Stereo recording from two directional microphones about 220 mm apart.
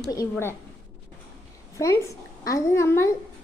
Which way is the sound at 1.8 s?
15° left (ahead or behind).